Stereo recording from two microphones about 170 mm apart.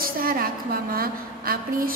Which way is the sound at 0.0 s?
60° right (ahead or behind).